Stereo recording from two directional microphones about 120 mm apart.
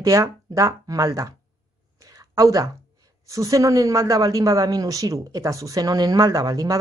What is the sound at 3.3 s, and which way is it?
A woman's voice, 30° right (ahead or behind).